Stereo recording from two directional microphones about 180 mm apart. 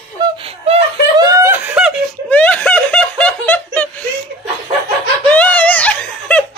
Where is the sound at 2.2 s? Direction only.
10° left (ahead or behind).